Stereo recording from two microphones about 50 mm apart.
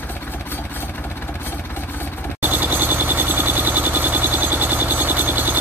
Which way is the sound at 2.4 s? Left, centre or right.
Right.